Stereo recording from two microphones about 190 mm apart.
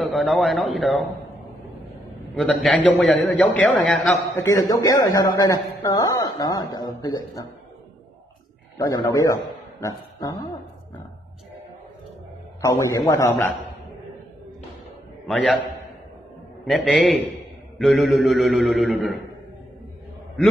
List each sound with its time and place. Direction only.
0.3 s a man's voice: centre (ahead or behind)
2.3 s a man's voice: centre (ahead or behind)
4.4 s a man's voice: 15° left (ahead or behind)
8.7 s a man's voice: 15° left (ahead or behind)
12.6 s a man's voice: 15° left (ahead or behind)
15.2 s a man's voice: 5° left (ahead or behind)
16.6 s a man's voice: centre (ahead or behind)